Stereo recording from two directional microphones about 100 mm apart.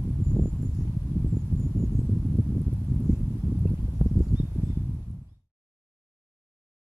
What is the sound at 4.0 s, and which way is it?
Insect, 5° left (ahead or behind).